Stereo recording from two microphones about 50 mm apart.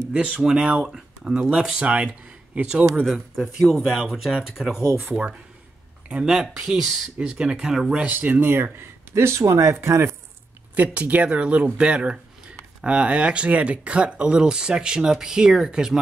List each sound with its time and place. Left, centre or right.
0.1 s speech: right
0.4 s speech: centre; by 2.7 s right
3.1 s a man's voice: centre
6.0 s speech: right; by 7.1 s centre
7.2 s speech: centre
7.9 s speech: right
8.7 s speech: right
10.7 s speech: right; by 16.0 s centre